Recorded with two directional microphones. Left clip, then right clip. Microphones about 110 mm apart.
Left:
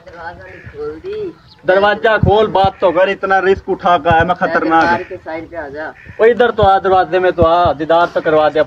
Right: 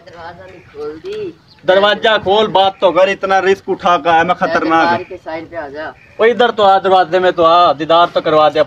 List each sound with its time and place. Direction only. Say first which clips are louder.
1.7 s a man's voice: right 1 dB; 25° right (ahead or behind)